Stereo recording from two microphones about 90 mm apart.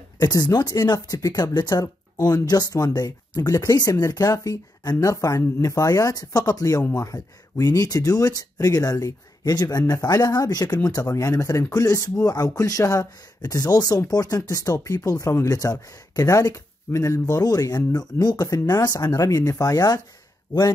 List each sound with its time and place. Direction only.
0.2 s speech: 45° left (ahead or behind)